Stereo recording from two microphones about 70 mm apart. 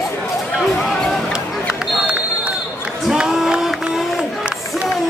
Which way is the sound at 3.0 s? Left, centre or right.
Centre.